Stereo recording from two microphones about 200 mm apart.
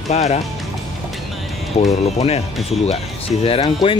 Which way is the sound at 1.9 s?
30° left (ahead or behind).